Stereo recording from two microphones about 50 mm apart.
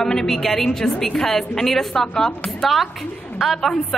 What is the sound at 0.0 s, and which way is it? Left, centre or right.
A woman's voice, centre.